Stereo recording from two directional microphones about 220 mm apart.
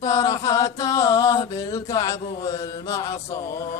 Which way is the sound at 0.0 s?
15° left (ahead or behind).